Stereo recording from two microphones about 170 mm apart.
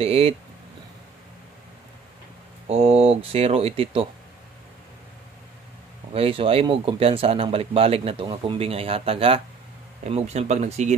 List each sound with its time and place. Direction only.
0.0 s speech: 35° right (ahead or behind)
2.7 s speech: 35° right (ahead or behind)
6.1 s speech: 35° right (ahead or behind)